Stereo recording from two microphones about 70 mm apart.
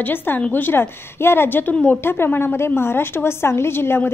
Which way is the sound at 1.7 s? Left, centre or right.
Centre.